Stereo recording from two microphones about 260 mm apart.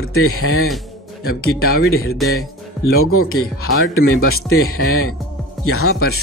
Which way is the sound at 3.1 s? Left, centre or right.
Left.